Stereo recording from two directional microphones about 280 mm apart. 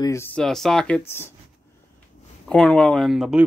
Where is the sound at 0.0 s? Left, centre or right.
Centre.